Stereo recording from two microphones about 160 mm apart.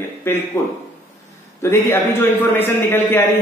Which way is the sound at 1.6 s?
15° left (ahead or behind).